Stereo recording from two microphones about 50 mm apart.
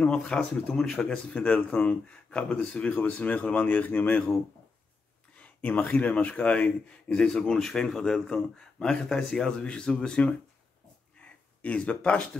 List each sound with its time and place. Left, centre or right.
0.0 s speech: left
3.0 s speech: left
5.4 s a sound: left
5.9 s speech: left
7.1 s speech: centre
11.1 s a sound: left